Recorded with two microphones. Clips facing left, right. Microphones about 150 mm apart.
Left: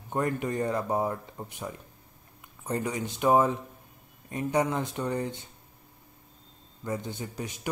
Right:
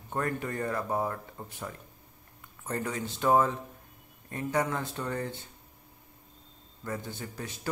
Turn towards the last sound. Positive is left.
turn(degrees=15)  # may be behind; listen again after turning